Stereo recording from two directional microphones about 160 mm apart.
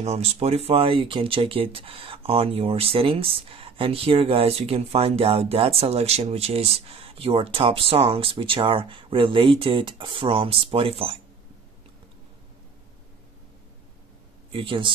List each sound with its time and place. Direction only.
0.0 s speech: 40° right (ahead or behind)
14.5 s speech: 30° right (ahead or behind)